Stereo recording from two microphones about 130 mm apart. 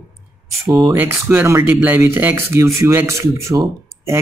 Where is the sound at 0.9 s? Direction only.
15° right (ahead or behind).